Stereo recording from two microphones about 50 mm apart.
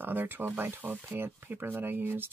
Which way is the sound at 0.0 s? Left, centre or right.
Right.